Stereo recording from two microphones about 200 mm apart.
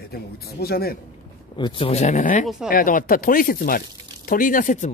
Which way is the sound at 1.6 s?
30° left (ahead or behind).